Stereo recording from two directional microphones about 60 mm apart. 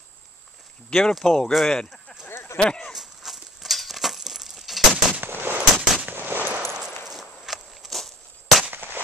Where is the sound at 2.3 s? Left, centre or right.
Left.